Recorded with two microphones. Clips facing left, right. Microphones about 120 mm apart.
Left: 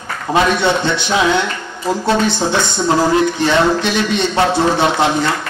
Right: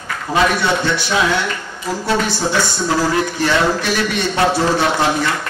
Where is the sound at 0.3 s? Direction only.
20° left (ahead or behind).